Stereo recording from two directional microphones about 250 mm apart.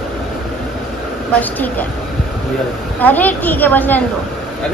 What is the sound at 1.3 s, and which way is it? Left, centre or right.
Speech, centre.